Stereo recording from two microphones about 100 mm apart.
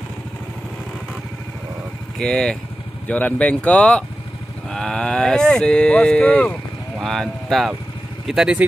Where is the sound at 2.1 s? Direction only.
5° left (ahead or behind).